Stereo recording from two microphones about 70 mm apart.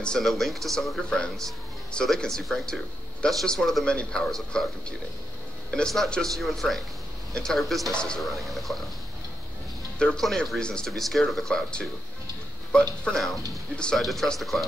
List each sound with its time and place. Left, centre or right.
0.0 s speech: centre
7.9 s speech: centre
8.2 s speech: centre
9.9 s speech: centre
13.0 s speech: centre